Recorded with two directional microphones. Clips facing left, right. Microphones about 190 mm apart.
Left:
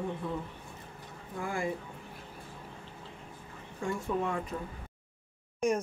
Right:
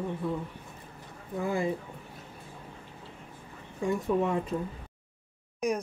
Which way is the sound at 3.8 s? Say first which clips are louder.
Right 5 dB; 20° right (ahead or behind).